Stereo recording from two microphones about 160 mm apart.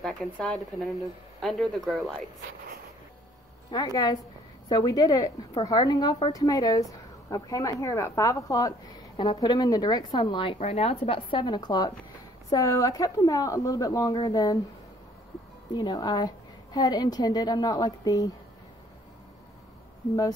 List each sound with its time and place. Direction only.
0.0 s speech: 5° left (ahead or behind)
3.7 s a woman's voice: 25° left (ahead or behind)
15.7 s a woman's voice: 25° left (ahead or behind)